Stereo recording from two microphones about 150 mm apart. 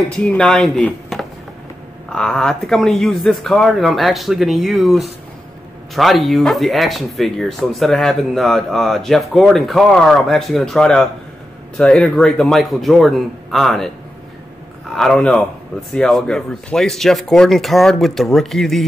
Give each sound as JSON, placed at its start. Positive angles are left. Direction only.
{"t": 0.2, "sound": "speech", "side_deg": 5}
{"t": 15.0, "sound": "speech", "side_deg": 5}